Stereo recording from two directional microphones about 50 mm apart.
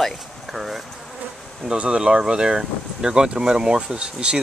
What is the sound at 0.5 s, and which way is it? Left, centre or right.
Speech, centre.